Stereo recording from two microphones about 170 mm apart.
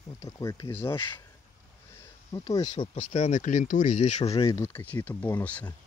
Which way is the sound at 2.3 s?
25° left (ahead or behind).